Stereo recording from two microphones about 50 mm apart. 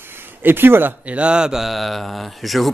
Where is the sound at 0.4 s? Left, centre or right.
Right.